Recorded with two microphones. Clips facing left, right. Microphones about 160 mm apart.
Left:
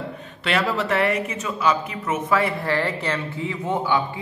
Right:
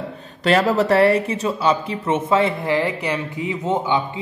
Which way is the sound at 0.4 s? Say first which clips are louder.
Right 6 dB; 40° right (ahead or behind).